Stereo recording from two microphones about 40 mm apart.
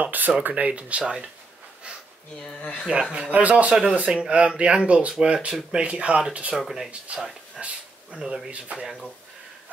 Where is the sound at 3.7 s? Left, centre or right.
Right.